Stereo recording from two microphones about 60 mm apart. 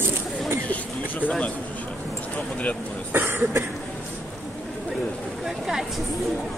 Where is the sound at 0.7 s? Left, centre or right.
Left.